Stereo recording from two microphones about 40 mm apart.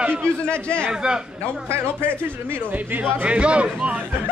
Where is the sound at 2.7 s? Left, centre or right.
Right.